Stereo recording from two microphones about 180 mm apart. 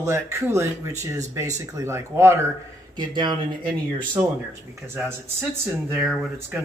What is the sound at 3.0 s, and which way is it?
Speech, 25° right (ahead or behind).